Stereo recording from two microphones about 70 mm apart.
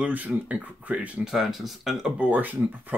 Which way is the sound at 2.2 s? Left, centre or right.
Right.